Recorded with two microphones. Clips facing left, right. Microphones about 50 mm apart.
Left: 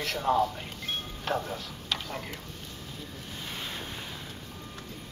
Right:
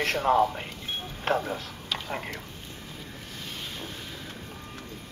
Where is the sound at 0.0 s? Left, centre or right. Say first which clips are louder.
Right 4 dB; right.